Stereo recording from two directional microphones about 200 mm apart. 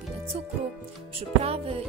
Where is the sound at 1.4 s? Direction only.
30° right (ahead or behind).